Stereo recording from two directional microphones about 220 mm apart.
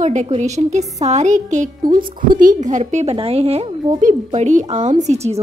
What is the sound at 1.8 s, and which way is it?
Speech, 20° right (ahead or behind).